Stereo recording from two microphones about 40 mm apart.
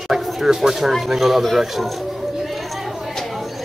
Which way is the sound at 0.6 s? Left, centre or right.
Centre.